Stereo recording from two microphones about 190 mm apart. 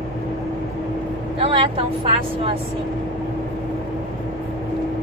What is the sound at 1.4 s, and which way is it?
Vehicle, 30° right (ahead or behind).